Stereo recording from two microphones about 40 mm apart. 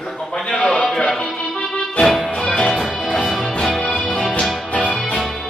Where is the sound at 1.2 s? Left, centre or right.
Left.